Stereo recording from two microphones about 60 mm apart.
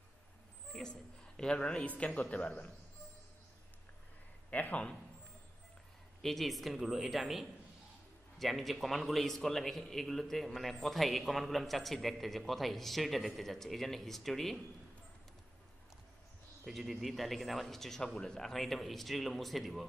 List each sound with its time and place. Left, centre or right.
0.7 s a woman's voice: centre
4.5 s a man's voice: left
6.2 s a man's voice: centre
16.6 s a man's voice: centre